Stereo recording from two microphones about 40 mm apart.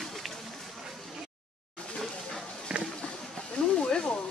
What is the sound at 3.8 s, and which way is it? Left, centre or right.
Snake, left.